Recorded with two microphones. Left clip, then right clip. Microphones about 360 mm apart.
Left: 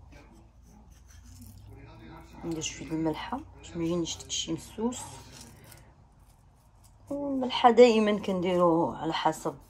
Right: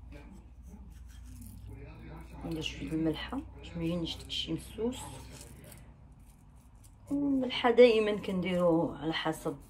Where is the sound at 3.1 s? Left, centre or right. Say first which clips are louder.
Left 3 dB; left.